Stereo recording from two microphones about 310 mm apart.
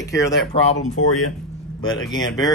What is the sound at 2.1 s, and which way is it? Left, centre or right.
Speech, centre.